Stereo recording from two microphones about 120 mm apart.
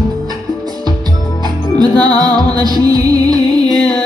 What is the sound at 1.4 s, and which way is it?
Music, 35° right (ahead or behind).